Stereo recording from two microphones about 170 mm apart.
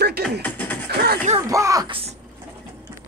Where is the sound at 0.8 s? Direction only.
75° right (ahead or behind).